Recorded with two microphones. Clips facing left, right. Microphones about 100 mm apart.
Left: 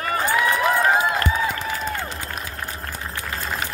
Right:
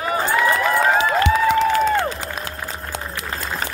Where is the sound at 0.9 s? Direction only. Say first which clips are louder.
Right 4 dB; 80° right.